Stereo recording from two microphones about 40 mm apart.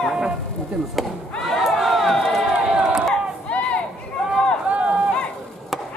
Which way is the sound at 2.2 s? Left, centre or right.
Centre.